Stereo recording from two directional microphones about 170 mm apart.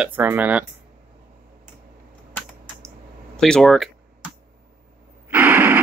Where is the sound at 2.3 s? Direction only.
10° left (ahead or behind).